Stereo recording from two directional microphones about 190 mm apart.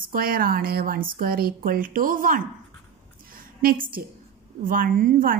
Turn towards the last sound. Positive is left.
turn(degrees=-50)  # may be behind; listen again after turning